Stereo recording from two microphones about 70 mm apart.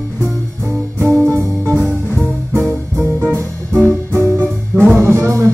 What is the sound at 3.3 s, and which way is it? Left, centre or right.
Music, right.